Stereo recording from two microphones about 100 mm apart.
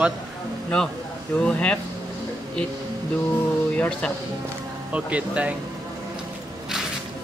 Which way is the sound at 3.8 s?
10° left (ahead or behind).